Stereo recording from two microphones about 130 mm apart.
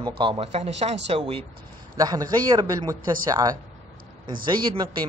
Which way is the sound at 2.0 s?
30° right (ahead or behind).